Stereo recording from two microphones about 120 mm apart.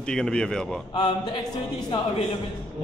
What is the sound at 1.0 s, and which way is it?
Speech, 45° left (ahead or behind).